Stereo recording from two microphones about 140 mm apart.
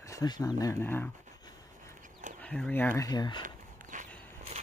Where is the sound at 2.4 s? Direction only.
5° left (ahead or behind).